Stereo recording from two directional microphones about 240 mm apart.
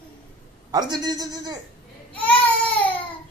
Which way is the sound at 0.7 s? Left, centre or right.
Centre.